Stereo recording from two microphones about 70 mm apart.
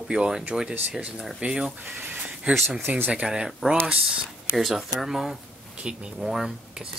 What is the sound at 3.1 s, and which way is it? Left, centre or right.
Speech, centre.